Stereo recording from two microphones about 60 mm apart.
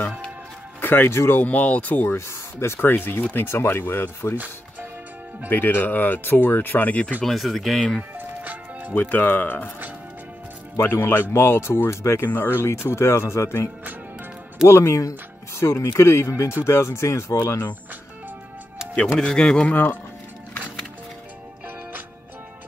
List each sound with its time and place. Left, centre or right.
0.7 s speech: left
1.4 s speech: left
2.1 s speech: left
3.4 s speech: left
5.5 s speech: left
7.2 s speech: centre
8.4 s music: right
9.1 s speech: left
10.8 s speech: left
14.7 s speech: left
19.1 s a man's voice: centre
19.7 s speech: left